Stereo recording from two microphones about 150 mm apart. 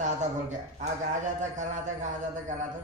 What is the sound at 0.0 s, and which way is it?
A man's voice, 55° right (ahead or behind).